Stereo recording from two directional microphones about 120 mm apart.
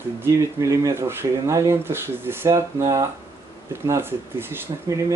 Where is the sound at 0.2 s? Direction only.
25° right (ahead or behind).